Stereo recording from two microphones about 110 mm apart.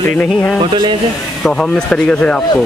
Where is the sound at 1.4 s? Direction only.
5° left (ahead or behind).